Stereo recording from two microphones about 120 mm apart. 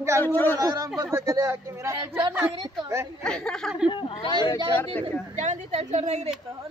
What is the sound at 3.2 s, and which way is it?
Speech, 5° left (ahead or behind).